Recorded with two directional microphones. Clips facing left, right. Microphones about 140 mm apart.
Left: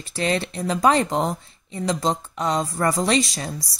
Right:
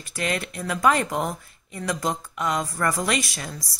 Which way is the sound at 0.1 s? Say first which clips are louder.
Left 4 dB; 30° left (ahead or behind).